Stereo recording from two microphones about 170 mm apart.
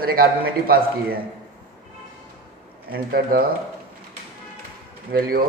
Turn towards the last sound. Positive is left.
turn(degrees=-65)  # may be behind; listen again after turning